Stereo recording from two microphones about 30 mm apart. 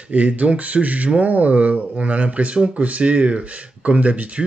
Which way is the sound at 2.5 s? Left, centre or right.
Right.